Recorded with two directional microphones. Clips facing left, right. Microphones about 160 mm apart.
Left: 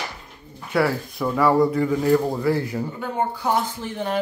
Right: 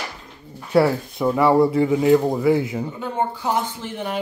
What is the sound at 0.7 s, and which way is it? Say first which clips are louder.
Speech: right 4 dB; 25° right (ahead or behind).